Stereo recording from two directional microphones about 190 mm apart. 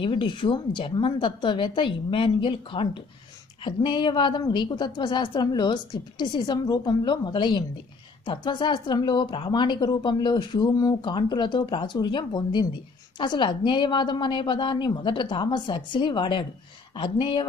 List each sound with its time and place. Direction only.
0.0 s speech: 25° left (ahead or behind)